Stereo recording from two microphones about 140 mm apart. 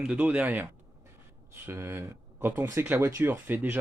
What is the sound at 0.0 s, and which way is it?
Speech, 10° right (ahead or behind).